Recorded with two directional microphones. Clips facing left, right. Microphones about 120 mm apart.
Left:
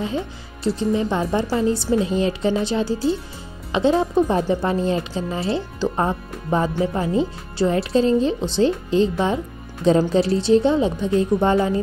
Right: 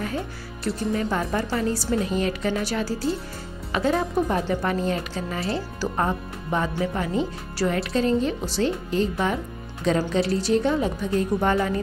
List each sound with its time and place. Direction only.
0.7 s speech: 25° left (ahead or behind)